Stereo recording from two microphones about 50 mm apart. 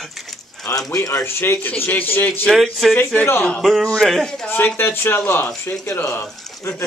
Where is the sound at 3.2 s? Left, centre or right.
Left.